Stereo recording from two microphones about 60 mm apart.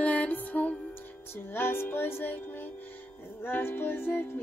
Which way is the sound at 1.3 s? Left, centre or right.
Left.